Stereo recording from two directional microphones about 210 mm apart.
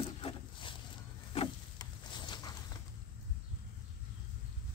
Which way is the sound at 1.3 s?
20° left (ahead or behind).